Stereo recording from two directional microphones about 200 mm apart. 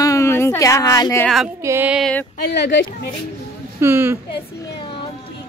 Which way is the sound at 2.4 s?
60° left (ahead or behind).